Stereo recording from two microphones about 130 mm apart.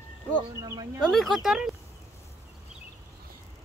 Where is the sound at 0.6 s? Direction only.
30° right (ahead or behind).